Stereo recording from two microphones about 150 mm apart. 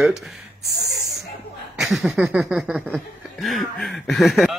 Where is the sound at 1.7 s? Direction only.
5° right (ahead or behind).